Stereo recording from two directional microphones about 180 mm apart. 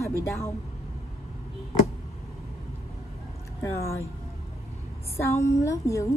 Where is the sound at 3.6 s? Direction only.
15° left (ahead or behind).